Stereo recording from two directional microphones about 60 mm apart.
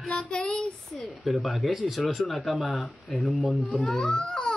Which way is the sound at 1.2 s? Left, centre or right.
Centre.